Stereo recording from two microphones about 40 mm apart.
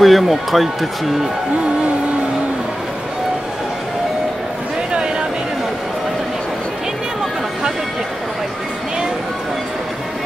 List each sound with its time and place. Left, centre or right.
0.0 s speech: centre